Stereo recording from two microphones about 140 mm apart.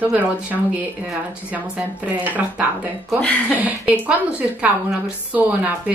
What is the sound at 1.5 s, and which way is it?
A woman's voice, 10° right (ahead or behind).